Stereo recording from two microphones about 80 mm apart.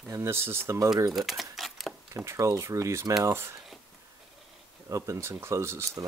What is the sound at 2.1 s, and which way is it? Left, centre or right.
Speech, right.